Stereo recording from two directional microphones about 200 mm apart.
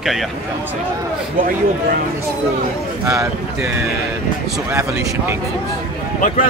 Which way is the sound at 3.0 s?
15° right (ahead or behind).